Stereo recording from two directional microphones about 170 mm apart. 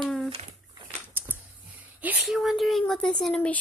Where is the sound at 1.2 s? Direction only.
10° right (ahead or behind).